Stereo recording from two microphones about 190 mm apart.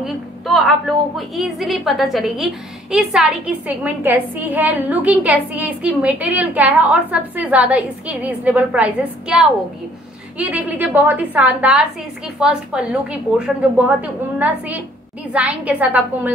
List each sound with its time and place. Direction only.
0.0 s a woman's voice: centre (ahead or behind)
15.3 s a woman's voice: 5° right (ahead or behind)